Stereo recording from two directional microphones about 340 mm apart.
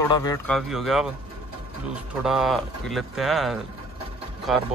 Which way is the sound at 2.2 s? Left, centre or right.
Centre.